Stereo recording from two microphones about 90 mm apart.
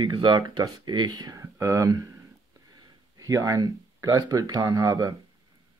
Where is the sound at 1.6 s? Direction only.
35° right (ahead or behind).